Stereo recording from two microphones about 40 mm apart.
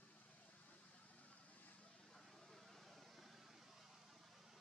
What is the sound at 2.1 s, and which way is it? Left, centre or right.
Vehicle, centre.